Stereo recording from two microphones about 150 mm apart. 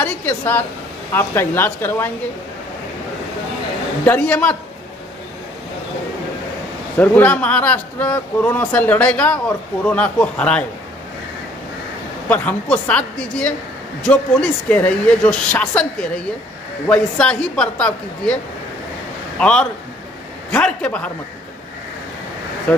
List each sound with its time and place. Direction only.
0.0 s a man's voice: 10° left (ahead or behind)
4.0 s a man's voice: 10° left (ahead or behind)
7.0 s a man's voice: 10° left (ahead or behind)
12.3 s a man's voice: 10° left (ahead or behind)
22.7 s a man's voice: 10° left (ahead or behind)